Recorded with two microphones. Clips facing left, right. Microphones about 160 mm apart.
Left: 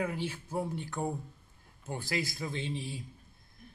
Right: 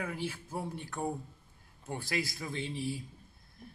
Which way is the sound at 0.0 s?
20° left (ahead or behind).